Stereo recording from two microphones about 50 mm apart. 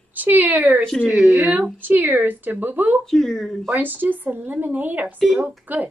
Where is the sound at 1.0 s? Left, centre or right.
Centre.